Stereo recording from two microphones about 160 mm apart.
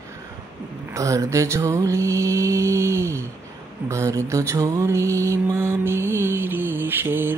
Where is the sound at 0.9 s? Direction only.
20° right (ahead or behind).